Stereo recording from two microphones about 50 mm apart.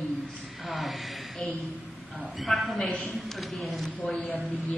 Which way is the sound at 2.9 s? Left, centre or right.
Centre.